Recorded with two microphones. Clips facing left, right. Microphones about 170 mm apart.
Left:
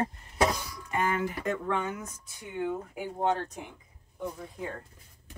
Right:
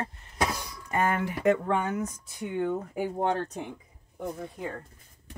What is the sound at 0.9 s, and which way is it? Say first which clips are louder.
Speech: right 2 dB; 60° right (ahead or behind).